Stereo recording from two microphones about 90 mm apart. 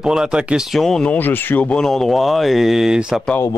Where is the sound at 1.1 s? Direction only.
20° left (ahead or behind).